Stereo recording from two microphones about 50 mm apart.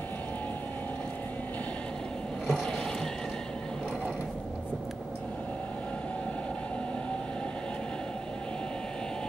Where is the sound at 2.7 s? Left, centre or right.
Centre.